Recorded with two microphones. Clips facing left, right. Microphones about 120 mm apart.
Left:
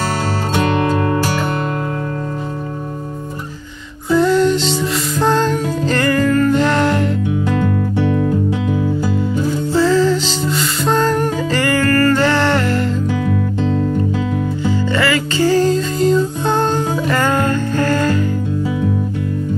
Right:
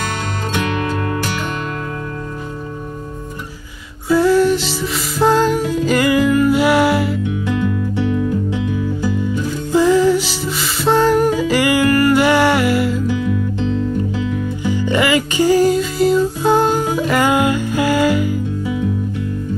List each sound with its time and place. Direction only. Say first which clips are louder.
0.6 s music: left 5 dB; 35° left (ahead or behind)
4.1 s music: even; 5° right (ahead or behind)
7.2 s music: left 2 dB; 40° left (ahead or behind)
9.0 s music: left 1 dB; 20° left (ahead or behind)
9.7 s music: right 2 dB; 15° right (ahead or behind)
13.2 s music: left 1 dB; 40° left (ahead or behind)
14.6 s music: right 2 dB; 15° right (ahead or behind)